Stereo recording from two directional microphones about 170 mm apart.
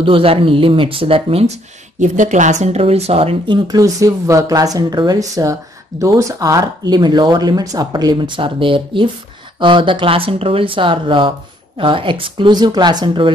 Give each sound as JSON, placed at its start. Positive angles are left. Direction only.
{"t": 0.0, "sound": "speech", "side_deg": -35}
{"t": 2.0, "sound": "speech", "side_deg": -45}
{"t": 3.6, "sound": "speech", "side_deg": -20}